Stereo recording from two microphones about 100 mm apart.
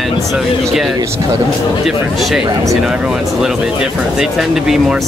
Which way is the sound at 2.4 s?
35° right (ahead or behind).